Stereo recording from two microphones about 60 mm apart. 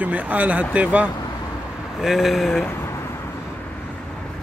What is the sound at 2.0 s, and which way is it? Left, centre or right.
Speech, centre.